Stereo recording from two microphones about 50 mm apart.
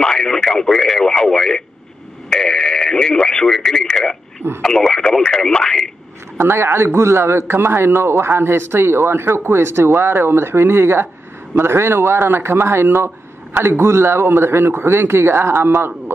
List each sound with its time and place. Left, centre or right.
0.0 s radio: centre
3.6 s speech: centre
6.3 s a man's voice: right